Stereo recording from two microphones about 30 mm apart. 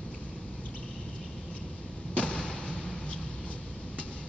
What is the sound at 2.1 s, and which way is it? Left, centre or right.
Thump, left.